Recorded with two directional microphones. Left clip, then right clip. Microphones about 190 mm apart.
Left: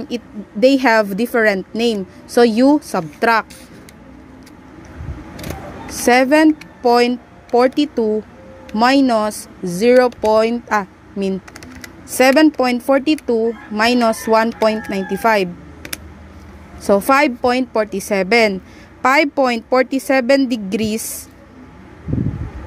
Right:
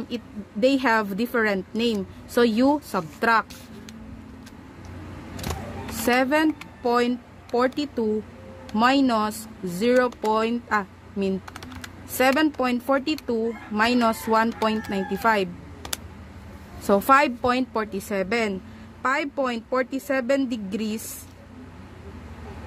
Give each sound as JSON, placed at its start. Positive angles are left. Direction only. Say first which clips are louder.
{"t": 0.1, "sound": "speech", "louder": "left 7 dB", "side_deg": 20}
{"t": 6.0, "sound": "speech", "louder": "left 9 dB", "side_deg": 20}